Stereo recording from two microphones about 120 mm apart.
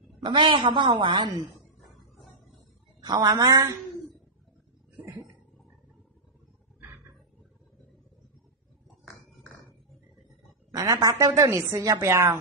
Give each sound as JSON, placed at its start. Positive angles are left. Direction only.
{"t": 0.2, "sound": "a woman's voice", "side_deg": -45}
{"t": 3.0, "sound": "a woman's voice", "side_deg": -35}
{"t": 10.7, "sound": "a woman's voice", "side_deg": -30}